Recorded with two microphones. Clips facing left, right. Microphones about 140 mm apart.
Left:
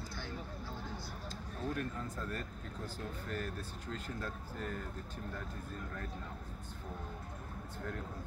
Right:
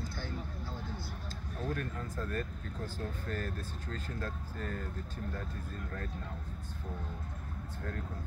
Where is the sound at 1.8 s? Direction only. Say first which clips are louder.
Right 1 dB; 15° left (ahead or behind).